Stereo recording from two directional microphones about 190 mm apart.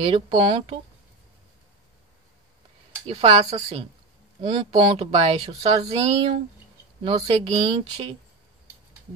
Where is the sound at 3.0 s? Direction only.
30° right (ahead or behind).